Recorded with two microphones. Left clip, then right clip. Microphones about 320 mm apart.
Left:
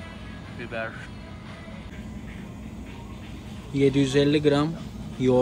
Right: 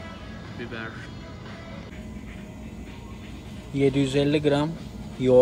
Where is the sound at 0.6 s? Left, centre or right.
Centre.